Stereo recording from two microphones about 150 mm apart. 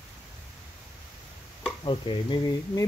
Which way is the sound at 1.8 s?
30° left (ahead or behind).